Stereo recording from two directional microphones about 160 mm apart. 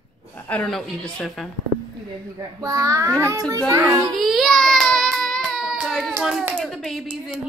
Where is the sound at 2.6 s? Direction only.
20° right (ahead or behind).